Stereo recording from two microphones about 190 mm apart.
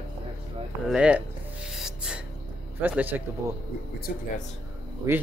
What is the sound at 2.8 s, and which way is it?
Speech, 10° right (ahead or behind).